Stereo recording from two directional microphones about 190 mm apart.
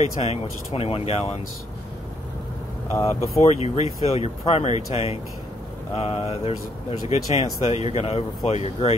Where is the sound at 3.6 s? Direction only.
35° left (ahead or behind).